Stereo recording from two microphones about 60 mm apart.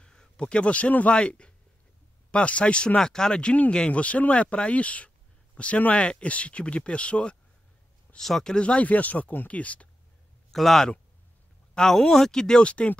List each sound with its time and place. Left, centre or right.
0.0 s a man's voice: centre
8.2 s speech: centre; by 9.8 s left
10.5 s speech: centre